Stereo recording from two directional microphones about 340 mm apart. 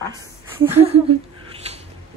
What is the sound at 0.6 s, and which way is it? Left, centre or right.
Speech, centre.